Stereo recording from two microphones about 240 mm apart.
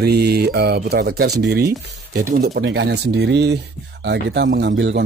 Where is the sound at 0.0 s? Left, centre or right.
Right.